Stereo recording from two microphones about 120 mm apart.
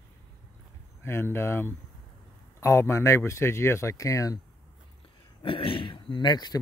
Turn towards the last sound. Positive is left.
turn(degrees=35)  # may be behind; listen again after turning